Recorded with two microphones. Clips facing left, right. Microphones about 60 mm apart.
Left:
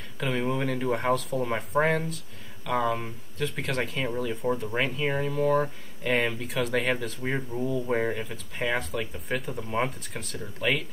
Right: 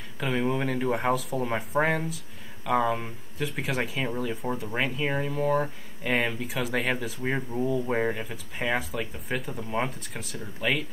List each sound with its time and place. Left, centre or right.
0.2 s speech: centre